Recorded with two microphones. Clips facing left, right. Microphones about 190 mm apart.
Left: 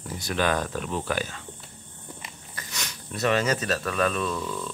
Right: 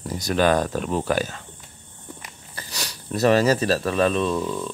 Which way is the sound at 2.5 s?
35° right (ahead or behind).